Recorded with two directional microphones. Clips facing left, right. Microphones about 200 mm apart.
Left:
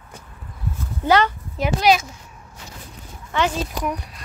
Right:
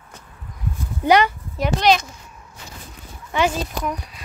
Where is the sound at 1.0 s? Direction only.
15° right (ahead or behind).